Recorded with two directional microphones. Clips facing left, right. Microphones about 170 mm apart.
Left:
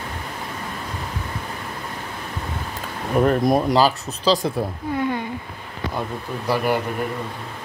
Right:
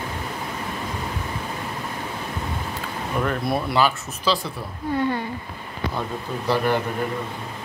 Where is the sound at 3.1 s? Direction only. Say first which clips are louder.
Left 7 dB; 40° left (ahead or behind).